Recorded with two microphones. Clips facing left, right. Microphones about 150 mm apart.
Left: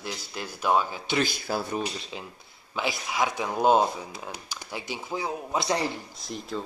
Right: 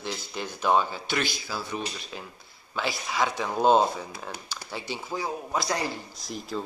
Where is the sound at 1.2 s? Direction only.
55° left (ahead or behind).